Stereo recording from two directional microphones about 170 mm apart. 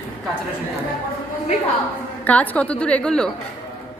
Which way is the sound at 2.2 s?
10° left (ahead or behind).